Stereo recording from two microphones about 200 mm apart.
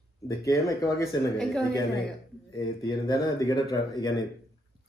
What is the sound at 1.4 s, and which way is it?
Speech, centre (ahead or behind).